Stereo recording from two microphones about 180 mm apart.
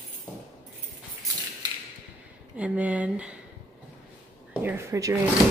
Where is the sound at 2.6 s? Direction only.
10° right (ahead or behind).